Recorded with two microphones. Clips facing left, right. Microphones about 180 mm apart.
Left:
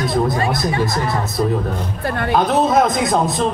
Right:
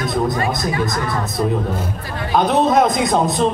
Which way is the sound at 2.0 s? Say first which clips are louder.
Left 6 dB; 60° left (ahead or behind).